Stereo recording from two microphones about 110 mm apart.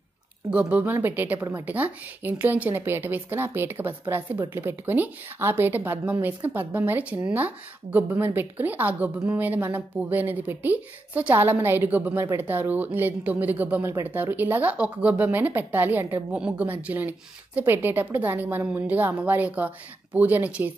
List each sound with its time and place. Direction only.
0.5 s a woman's voice: 10° right (ahead or behind)